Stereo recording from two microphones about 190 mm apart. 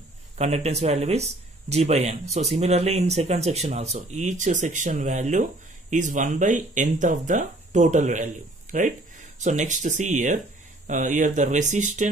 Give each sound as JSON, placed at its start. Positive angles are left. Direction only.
{"t": 0.4, "sound": "speech", "side_deg": -35}